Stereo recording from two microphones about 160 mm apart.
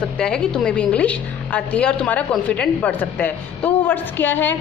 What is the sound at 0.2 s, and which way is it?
A woman's voice, 5° left (ahead or behind).